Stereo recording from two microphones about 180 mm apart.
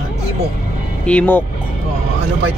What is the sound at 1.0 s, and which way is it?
Speech, 10° left (ahead or behind).